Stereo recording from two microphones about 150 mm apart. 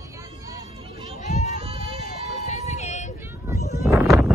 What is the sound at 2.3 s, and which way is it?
Vehicle, 50° left (ahead or behind).